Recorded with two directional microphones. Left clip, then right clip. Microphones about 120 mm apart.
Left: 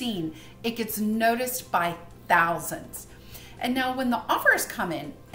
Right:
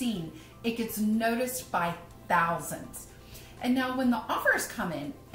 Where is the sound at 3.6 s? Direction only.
15° left (ahead or behind).